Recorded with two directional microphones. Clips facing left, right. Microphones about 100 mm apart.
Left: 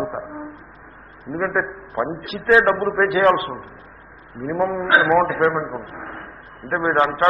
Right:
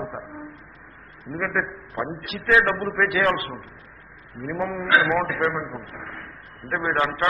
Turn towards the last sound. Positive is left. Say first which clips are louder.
# left 5 dB
turn(degrees=25)  # may be behind; listen again after turning